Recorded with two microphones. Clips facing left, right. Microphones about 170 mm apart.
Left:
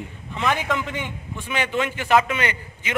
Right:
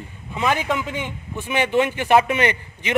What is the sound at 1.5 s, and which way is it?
Speech, 20° right (ahead or behind).